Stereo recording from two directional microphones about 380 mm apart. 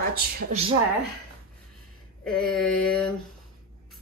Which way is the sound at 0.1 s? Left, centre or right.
Right.